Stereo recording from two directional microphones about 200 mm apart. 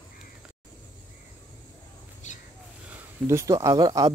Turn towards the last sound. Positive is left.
turn(degrees=-15)  # may be behind; listen again after turning